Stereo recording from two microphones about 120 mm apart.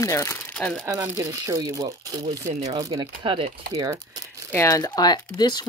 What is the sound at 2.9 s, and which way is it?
Speech, 50° right (ahead or behind).